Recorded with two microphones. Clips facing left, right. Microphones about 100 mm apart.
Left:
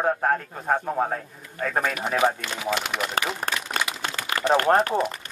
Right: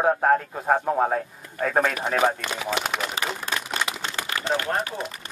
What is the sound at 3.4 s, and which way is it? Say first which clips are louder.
Speech: left 1 dB; 55° left (ahead or behind).